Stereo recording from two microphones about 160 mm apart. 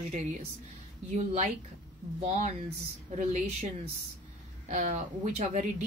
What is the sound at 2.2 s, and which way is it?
Speech, 45° right (ahead or behind).